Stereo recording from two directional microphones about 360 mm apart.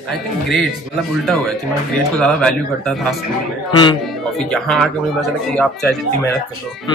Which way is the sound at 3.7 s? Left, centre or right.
Centre.